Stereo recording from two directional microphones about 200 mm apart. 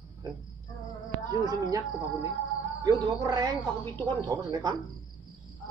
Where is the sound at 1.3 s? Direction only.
20° right (ahead or behind).